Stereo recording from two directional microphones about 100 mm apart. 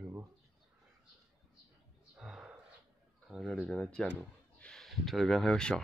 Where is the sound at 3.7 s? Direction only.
5° left (ahead or behind).